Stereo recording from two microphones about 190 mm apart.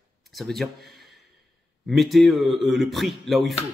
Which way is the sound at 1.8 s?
Centre (ahead or behind).